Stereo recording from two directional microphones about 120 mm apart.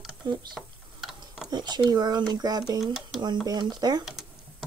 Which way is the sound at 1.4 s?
35° right (ahead or behind).